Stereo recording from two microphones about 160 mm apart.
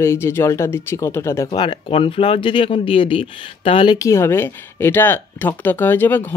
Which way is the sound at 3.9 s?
20° left (ahead or behind).